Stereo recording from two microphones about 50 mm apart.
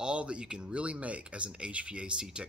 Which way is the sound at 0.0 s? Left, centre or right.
Right.